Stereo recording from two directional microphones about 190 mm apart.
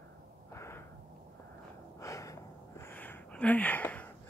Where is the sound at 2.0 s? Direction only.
15° left (ahead or behind).